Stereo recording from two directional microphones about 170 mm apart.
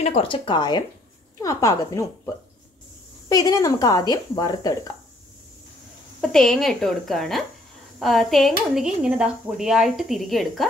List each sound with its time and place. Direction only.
0.0 s speech: 35° left (ahead or behind)
6.2 s speech: 5° left (ahead or behind)